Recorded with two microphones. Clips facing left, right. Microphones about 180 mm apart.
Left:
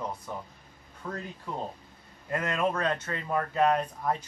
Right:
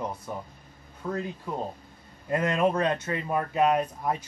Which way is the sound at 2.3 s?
20° right (ahead or behind).